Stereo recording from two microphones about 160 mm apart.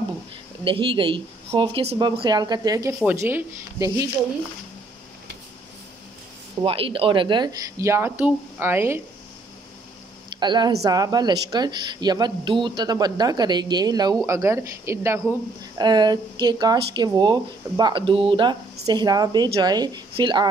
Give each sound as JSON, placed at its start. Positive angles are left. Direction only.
{"t": 0.7, "sound": "speech", "side_deg": -30}
{"t": 6.6, "sound": "speech", "side_deg": -35}
{"t": 10.3, "sound": "speech", "side_deg": -30}